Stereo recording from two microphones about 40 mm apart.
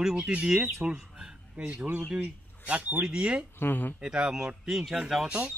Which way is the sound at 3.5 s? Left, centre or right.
Left.